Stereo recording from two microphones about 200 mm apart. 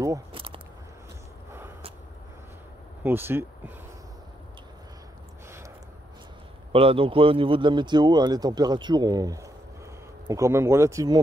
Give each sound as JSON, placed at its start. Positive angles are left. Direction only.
{"t": 0.0, "sound": "a sound", "side_deg": -20}
{"t": 3.0, "sound": "speech", "side_deg": -10}
{"t": 6.7, "sound": "speech", "side_deg": -30}